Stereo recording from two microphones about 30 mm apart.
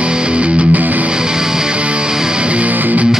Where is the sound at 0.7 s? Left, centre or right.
Right.